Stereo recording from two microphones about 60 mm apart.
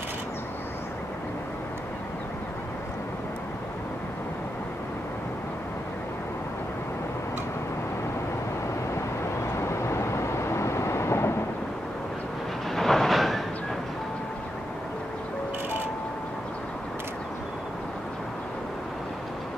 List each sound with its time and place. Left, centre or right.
9.6 s vehicle: left
12.7 s train: centre